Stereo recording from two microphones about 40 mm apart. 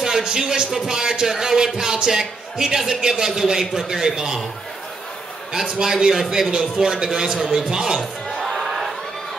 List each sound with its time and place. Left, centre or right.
0.0 s a man's voice: centre
5.7 s a man's voice: centre
6.8 s a man's voice: centre
8.4 s crowd: centre